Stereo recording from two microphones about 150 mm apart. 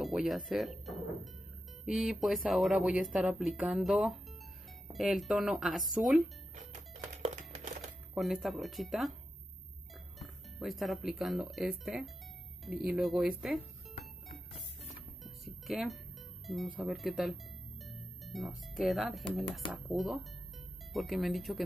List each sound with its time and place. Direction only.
0.0 s speech: centre (ahead or behind)
6.5 s music: 50° right (ahead or behind)
8.1 s speech: centre (ahead or behind)
10.1 s speech: centre (ahead or behind)
15.2 s music: centre (ahead or behind)
16.4 s speech: centre (ahead or behind)